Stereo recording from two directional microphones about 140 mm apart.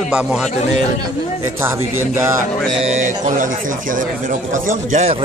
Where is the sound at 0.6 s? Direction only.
50° left (ahead or behind).